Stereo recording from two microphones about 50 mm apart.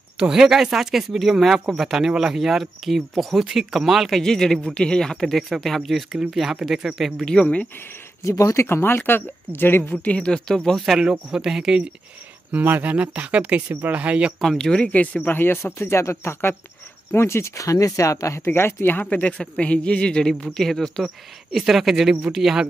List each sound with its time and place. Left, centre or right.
0.2 s speech: centre
4.2 s speech: centre
7.2 s a man's voice: left
8.2 s speech: left
8.8 s speech: left
10.0 s speech: left
11.0 s speech: centre
12.5 s speech: right
14.4 s speech: centre
14.9 s speech: left
18.5 s speech: left
18.9 s a man's voice: left; by 20.4 s centre
20.4 s speech: centre
21.5 s speech: centre